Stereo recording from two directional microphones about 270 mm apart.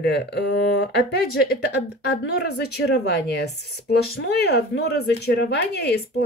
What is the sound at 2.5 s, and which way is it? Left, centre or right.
Speech, left.